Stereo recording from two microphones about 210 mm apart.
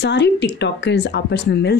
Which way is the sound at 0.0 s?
55° left (ahead or behind).